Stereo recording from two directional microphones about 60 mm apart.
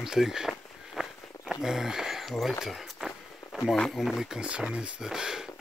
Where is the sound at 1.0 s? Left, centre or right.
Centre.